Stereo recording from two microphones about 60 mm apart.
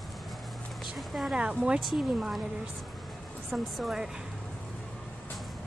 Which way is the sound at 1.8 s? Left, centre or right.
Centre.